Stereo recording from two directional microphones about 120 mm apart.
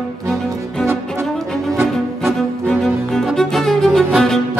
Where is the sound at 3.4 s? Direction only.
5° left (ahead or behind).